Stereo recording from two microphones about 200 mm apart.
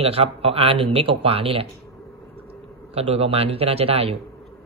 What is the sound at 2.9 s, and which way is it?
Speech, 30° right (ahead or behind).